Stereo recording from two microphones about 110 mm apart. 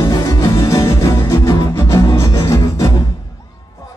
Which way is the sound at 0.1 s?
25° left (ahead or behind).